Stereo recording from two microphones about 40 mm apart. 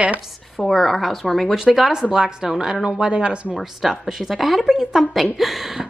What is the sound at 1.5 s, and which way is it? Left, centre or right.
Speech, centre.